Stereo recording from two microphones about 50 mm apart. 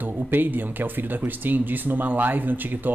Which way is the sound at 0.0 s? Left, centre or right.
Right.